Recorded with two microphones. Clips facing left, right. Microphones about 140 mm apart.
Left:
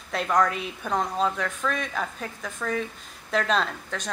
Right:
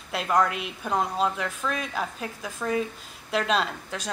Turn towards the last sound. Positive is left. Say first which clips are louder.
# even
turn(degrees=-5)  # may be behind; listen again after turning